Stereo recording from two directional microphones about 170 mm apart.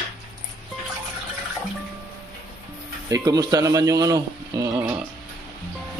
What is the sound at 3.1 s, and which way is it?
A man's voice, 20° right (ahead or behind).